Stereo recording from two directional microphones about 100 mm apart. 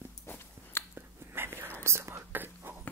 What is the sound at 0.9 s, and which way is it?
Whispering, 20° right (ahead or behind).